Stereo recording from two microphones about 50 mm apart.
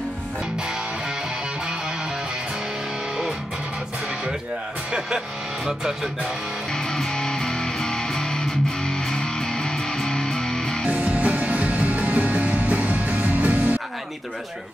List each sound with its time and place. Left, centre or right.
6.7 s music: centre
10.9 s music: right